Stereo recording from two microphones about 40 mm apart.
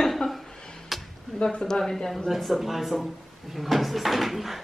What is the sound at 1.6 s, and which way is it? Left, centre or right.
Speech, centre.